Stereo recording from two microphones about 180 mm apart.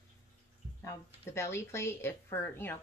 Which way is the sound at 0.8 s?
15° left (ahead or behind).